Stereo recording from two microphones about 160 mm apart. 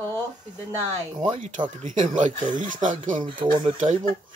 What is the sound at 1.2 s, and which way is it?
Speech, 45° right (ahead or behind).